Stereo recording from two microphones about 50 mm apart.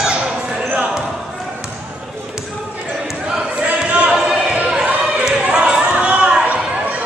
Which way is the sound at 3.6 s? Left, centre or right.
Right.